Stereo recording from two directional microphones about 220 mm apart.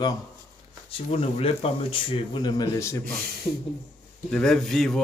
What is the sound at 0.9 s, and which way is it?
Speech, 25° left (ahead or behind).